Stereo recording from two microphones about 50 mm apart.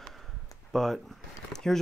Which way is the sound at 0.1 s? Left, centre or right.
Centre.